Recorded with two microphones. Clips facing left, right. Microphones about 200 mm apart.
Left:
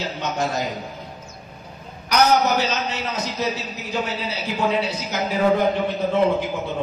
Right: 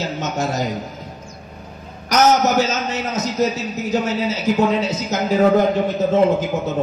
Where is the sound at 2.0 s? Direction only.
45° right (ahead or behind).